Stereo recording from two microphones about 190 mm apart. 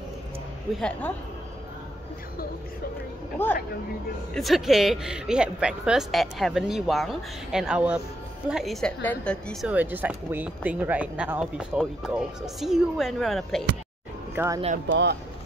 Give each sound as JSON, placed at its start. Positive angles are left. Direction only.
{"t": 0.7, "sound": "a woman's voice", "side_deg": 5}
{"t": 3.4, "sound": "speech", "side_deg": 10}
{"t": 4.3, "sound": "a woman's voice", "side_deg": 0}
{"t": 9.7, "sound": "a woman's voice", "side_deg": -10}
{"t": 14.3, "sound": "speech", "side_deg": -15}
{"t": 14.9, "sound": "speech", "side_deg": -65}